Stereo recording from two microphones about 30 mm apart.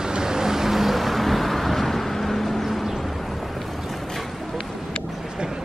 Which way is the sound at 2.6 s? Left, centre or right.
Centre.